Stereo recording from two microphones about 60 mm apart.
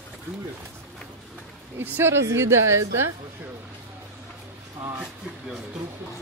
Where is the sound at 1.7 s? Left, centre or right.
Right.